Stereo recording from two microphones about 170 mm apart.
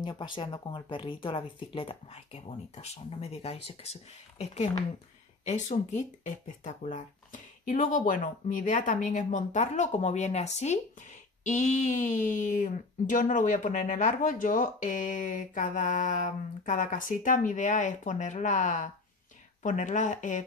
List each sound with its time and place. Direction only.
0.0 s speech: 30° left (ahead or behind); by 20.4 s 45° left (ahead or behind)